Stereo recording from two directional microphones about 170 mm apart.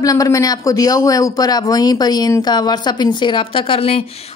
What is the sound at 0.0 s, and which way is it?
Speech, 20° left (ahead or behind).